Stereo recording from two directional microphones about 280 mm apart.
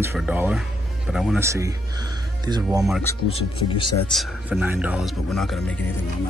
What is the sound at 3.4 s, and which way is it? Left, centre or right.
Speech, centre.